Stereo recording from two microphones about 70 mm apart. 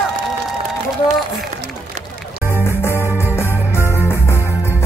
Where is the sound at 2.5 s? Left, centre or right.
Left.